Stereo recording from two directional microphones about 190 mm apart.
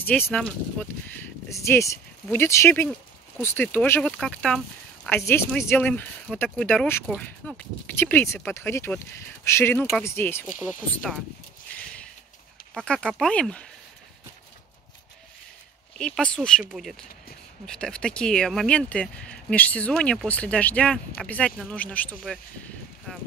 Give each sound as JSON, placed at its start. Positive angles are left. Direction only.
{"t": 0.0, "sound": "speech", "side_deg": 10}
{"t": 11.7, "sound": "a sound", "side_deg": 5}
{"t": 12.7, "sound": "speech", "side_deg": 5}
{"t": 16.0, "sound": "speech", "side_deg": 5}